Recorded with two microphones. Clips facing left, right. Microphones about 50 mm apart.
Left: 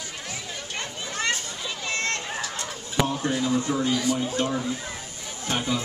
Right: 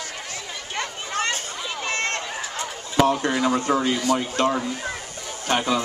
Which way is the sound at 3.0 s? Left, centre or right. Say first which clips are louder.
Right 5 dB; right.